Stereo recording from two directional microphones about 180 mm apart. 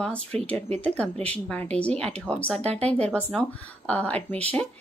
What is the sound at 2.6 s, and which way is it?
Speech, 35° right (ahead or behind).